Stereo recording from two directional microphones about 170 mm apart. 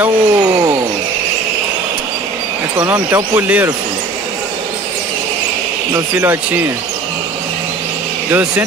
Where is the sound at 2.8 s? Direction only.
10° right (ahead or behind).